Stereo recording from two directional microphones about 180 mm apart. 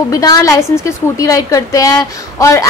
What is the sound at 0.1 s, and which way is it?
A woman's voice, 20° left (ahead or behind).